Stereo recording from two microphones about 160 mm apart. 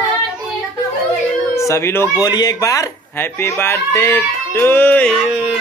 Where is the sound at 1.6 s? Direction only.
15° left (ahead or behind).